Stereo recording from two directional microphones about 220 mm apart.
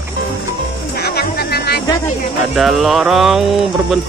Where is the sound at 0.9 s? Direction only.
45° left (ahead or behind).